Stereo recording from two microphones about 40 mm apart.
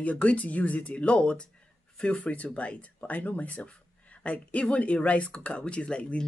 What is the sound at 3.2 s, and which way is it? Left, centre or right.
Speech, left.